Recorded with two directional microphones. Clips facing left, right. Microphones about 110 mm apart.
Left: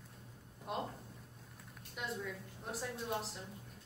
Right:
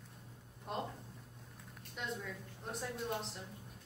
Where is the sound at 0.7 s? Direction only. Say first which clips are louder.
Left 1 dB; 5° left (ahead or behind).